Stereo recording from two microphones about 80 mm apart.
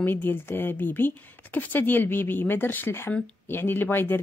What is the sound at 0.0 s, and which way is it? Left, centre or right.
A woman's voice, left.